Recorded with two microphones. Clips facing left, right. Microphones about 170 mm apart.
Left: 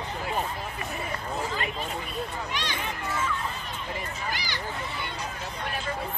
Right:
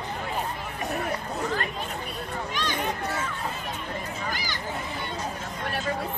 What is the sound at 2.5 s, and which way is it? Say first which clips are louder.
Speech: right 4 dB; 45° right (ahead or behind).